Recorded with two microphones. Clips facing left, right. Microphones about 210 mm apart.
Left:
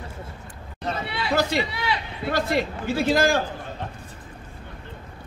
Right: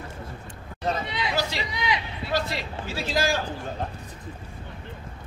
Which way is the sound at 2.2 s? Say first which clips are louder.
Left 6 dB; 50° left (ahead or behind).